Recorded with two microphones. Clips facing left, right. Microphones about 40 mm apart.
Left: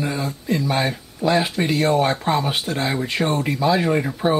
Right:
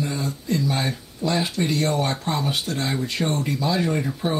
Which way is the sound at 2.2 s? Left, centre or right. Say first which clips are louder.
Left 4 dB; left.